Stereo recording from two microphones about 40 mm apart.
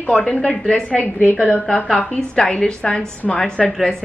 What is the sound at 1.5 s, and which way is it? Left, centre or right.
Speech, left.